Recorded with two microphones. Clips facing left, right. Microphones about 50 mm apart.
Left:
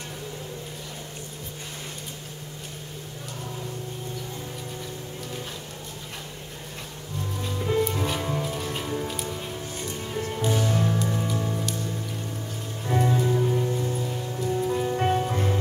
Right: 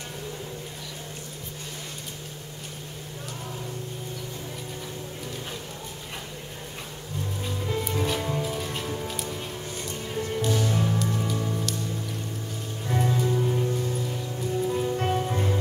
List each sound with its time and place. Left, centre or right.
7.5 s music: centre
10.4 s music: centre
10.7 s music: centre
12.8 s music: centre